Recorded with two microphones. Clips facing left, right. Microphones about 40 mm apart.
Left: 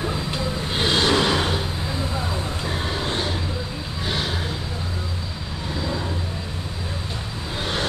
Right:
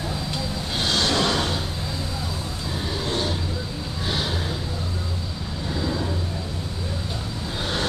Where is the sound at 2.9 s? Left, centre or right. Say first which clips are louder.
Right 2 dB; left.